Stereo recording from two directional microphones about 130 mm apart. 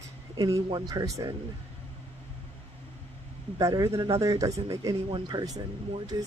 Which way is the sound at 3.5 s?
30° right (ahead or behind).